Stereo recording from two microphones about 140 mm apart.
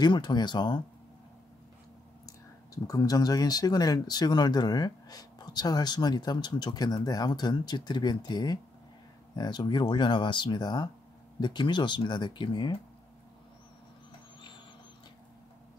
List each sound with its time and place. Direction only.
0.0 s speech: 30° left (ahead or behind)
2.2 s speech: 25° left (ahead or behind)